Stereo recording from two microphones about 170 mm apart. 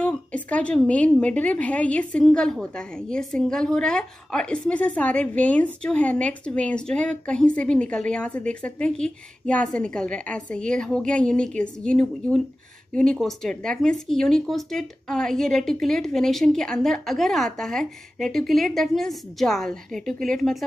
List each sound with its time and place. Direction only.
0.0 s a woman's voice: 5° left (ahead or behind)